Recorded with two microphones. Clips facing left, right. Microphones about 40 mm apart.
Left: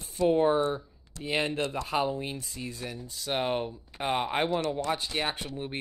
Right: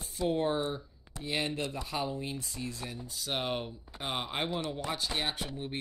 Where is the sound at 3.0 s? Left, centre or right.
Centre.